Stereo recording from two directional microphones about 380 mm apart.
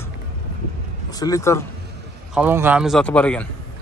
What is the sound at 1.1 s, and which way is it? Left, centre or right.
Speech, centre.